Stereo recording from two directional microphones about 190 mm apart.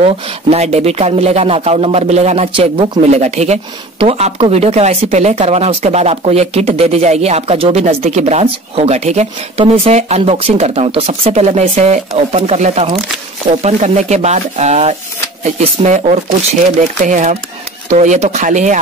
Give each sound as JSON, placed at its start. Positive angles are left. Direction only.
{"t": 0.0, "sound": "speech", "side_deg": -35}